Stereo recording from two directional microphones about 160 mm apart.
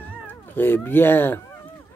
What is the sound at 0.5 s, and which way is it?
Speech, 15° left (ahead or behind).